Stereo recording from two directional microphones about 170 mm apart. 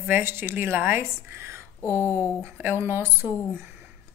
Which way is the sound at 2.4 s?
15° right (ahead or behind).